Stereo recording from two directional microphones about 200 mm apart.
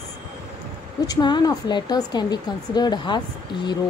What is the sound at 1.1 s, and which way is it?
Speech, 20° left (ahead or behind).